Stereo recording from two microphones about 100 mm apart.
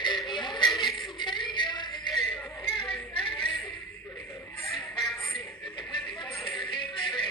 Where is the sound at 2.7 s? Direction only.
60° left (ahead or behind).